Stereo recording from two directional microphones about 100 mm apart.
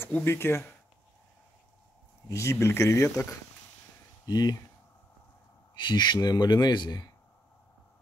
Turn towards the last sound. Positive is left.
turn(degrees=45)  # may be behind; listen again after turning